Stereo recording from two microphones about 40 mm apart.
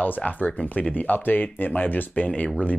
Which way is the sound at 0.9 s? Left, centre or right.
Left.